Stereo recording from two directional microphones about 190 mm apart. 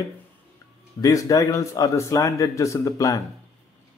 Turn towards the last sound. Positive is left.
turn(degrees=15)  # may be behind; listen again after turning